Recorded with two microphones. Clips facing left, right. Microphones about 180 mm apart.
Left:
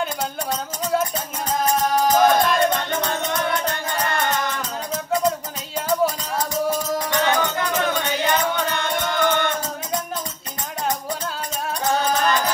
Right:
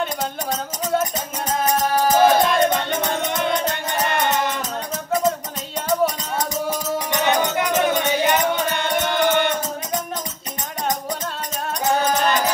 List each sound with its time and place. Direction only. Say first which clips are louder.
0.0 s music: right 1 dB; centre (ahead or behind)
2.4 s music: right 1 dB; 20° right (ahead or behind)
6.7 s music: left 1 dB; 20° right (ahead or behind)
11.8 s music: right 2 dB; 20° right (ahead or behind)